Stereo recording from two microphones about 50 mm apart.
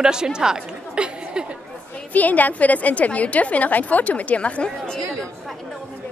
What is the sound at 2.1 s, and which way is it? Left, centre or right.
A woman's voice, left.